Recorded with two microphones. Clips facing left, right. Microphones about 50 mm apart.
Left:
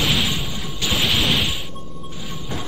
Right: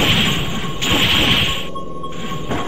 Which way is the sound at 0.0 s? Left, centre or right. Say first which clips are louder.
Right 5 dB; right.